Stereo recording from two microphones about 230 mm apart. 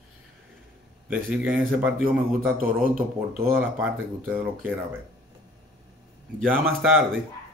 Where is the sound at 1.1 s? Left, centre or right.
Centre.